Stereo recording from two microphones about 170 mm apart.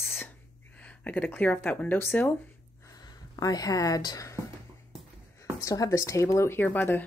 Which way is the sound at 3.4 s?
20° left (ahead or behind).